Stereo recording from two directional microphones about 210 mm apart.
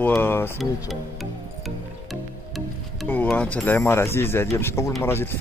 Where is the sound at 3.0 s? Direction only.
10° left (ahead or behind).